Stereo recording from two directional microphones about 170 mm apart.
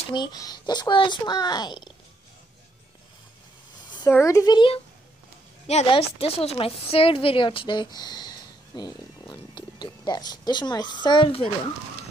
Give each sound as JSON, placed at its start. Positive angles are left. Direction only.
{"t": 0.1, "sound": "a woman's voice", "side_deg": 25}
{"t": 3.9, "sound": "a child's voice", "side_deg": 10}
{"t": 5.7, "sound": "a woman's voice", "side_deg": 35}